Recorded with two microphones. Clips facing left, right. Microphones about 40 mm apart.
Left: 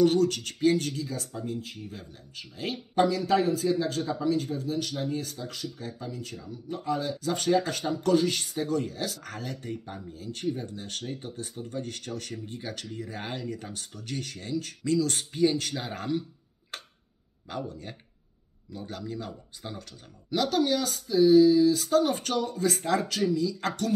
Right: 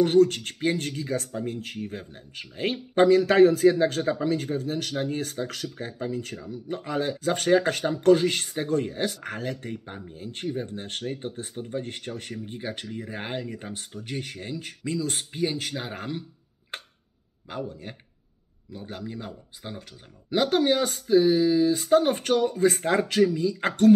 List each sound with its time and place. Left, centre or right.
0.0 s speech: right
1.9 s speech: right
5.9 s speech: right; by 16.3 s centre
16.7 s tick-tock: right
17.5 s speech: centre
20.2 s speech: right